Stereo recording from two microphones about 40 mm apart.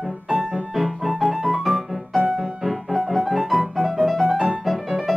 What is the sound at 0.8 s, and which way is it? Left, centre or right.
Music, centre.